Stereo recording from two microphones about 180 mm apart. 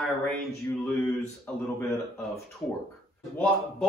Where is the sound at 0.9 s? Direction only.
15° left (ahead or behind).